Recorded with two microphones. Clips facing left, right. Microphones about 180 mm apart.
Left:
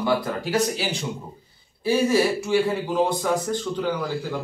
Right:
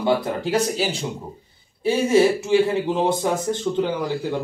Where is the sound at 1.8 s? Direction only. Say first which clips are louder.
Right 3 dB; 25° right (ahead or behind).